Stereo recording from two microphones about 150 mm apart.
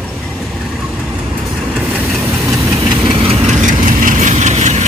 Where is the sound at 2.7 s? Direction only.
30° right (ahead or behind); by 4.9 s 50° right (ahead or behind).